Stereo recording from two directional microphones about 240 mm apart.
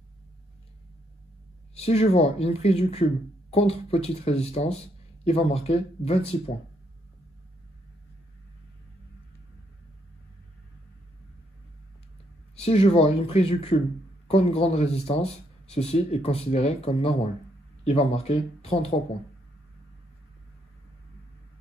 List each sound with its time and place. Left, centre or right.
1.8 s speech: left
12.5 s speech: left